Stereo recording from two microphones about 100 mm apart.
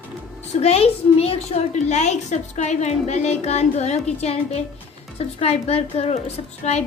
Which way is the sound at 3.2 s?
90° left.